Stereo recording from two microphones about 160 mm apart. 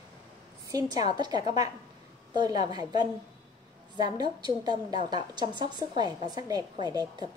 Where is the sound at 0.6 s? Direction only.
25° right (ahead or behind).